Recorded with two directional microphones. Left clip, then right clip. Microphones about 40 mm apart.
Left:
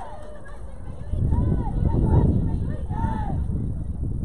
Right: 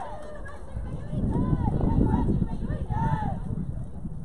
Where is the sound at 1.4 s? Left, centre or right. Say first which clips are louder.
Even; centre.